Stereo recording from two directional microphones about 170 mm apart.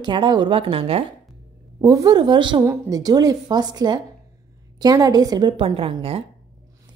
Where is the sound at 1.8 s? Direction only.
20° right (ahead or behind).